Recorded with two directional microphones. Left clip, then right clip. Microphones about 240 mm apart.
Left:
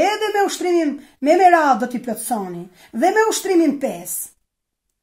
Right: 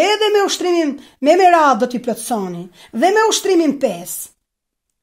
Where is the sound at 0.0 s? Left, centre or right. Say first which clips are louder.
Right 4 dB; right.